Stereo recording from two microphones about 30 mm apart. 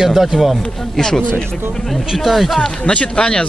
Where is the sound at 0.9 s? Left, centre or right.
Centre.